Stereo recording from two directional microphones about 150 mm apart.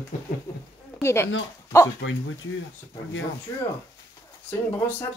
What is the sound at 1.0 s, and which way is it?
Speech, 15° left (ahead or behind).